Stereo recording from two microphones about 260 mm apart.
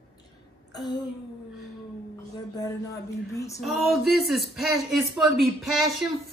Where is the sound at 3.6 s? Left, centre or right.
Centre.